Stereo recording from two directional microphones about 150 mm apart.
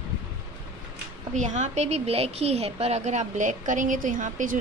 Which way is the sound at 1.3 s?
55° right (ahead or behind).